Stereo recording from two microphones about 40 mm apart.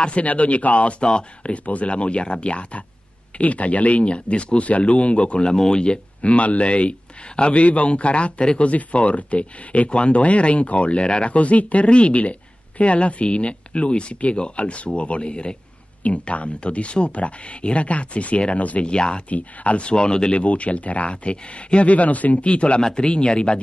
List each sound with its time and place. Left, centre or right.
0.0 s speech: left
11.3 s speech: left
18.9 s speech: left
19.2 s speech: left